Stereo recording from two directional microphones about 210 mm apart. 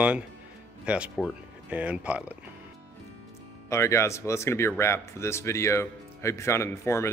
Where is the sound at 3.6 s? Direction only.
15° left (ahead or behind).